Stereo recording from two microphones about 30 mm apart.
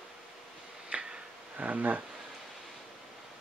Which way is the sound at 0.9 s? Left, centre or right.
Right.